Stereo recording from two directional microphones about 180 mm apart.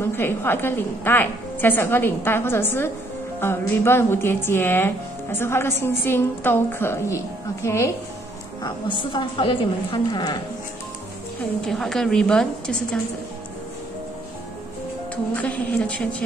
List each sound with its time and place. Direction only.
0.0 s speech: 15° left (ahead or behind)
9.1 s a woman's voice: 30° left (ahead or behind)
11.6 s a woman's voice: centre (ahead or behind)
15.3 s speech: 10° left (ahead or behind)